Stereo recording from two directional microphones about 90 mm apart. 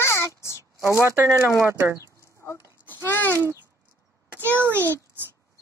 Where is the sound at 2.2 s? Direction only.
35° left (ahead or behind).